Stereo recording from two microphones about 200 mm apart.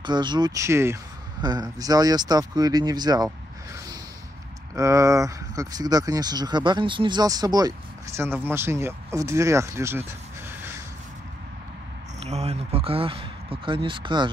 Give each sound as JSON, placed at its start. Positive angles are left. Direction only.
{"t": 0.0, "sound": "speech", "side_deg": -20}
{"t": 4.7, "sound": "speech", "side_deg": -15}
{"t": 12.3, "sound": "speech", "side_deg": -30}